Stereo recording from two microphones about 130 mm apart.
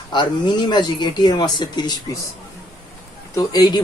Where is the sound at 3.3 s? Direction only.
35° left (ahead or behind).